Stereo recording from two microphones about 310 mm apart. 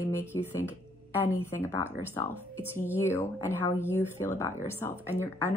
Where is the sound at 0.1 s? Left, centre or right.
Centre.